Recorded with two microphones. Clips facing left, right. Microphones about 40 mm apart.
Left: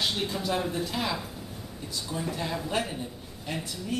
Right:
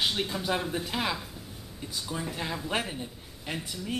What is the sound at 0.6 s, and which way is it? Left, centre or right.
Speech, centre.